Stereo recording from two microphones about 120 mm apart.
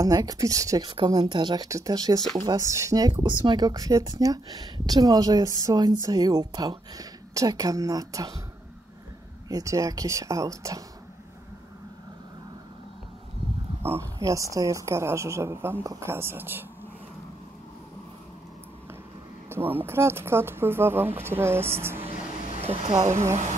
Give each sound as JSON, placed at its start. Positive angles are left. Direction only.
{"t": 0.0, "sound": "speech", "side_deg": -30}
{"t": 0.8, "sound": "speech", "side_deg": -45}
{"t": 9.5, "sound": "speech", "side_deg": -30}
{"t": 13.8, "sound": "speech", "side_deg": -25}
{"t": 19.5, "sound": "speech", "side_deg": -15}
{"t": 22.0, "sound": "vehicle", "side_deg": -55}
{"t": 22.8, "sound": "speech", "side_deg": -30}